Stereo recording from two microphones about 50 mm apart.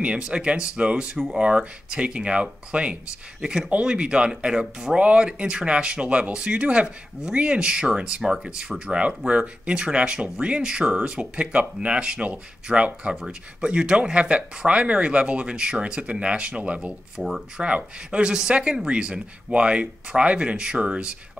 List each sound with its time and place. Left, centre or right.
0.0 s speech: right
3.3 s speech: centre
17.2 s speech: centre
17.6 s speech: right